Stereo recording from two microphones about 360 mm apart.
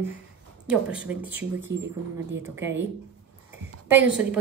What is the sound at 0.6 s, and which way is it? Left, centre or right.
Speech, centre.